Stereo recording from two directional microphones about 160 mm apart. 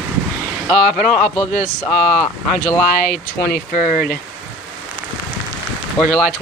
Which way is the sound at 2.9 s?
55° left (ahead or behind).